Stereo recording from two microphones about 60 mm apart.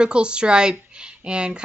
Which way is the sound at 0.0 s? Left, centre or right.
Centre.